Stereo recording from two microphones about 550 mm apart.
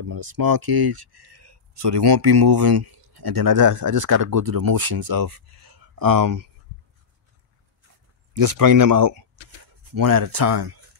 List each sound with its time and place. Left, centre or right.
0.1 s speech: right
8.5 s speech: right